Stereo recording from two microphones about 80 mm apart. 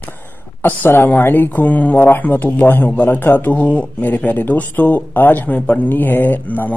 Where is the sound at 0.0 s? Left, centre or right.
Left.